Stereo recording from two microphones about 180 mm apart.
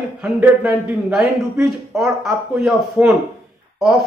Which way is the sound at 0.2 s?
5° right (ahead or behind).